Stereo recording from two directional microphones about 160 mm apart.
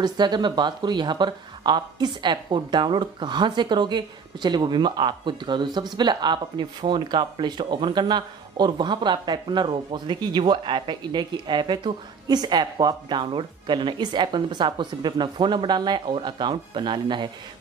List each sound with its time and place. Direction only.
0.0 s speech: 30° right (ahead or behind)